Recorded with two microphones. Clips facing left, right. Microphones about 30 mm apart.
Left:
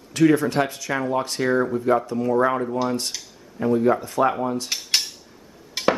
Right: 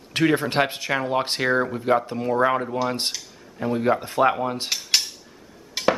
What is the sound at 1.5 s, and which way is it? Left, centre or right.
Speech, right.